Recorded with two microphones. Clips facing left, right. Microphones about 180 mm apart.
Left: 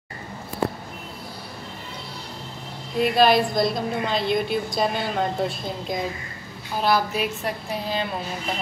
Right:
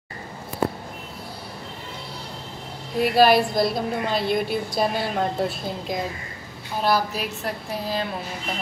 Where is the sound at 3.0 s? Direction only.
5° right (ahead or behind).